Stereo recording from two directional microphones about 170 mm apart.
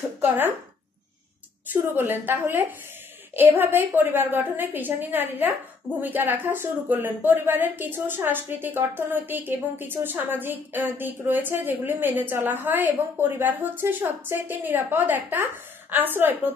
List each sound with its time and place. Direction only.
1.7 s a woman's voice: 10° right (ahead or behind)